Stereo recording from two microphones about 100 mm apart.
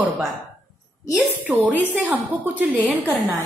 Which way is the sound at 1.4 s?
15° right (ahead or behind).